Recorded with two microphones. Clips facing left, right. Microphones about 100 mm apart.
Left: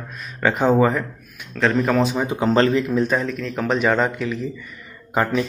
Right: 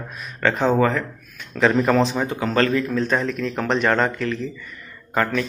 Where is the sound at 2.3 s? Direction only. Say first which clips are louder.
Left 3 dB; 25° left (ahead or behind).